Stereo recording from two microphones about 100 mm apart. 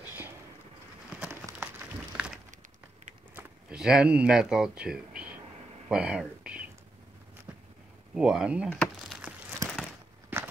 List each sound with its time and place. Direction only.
1.6 s applause: 15° right (ahead or behind)
3.7 s speech: 5° right (ahead or behind)
5.9 s a sound: 10° right (ahead or behind)
8.1 s speech: 5° right (ahead or behind)
8.6 s speech: 10° left (ahead or behind)
9.6 s a sound: 40° right (ahead or behind)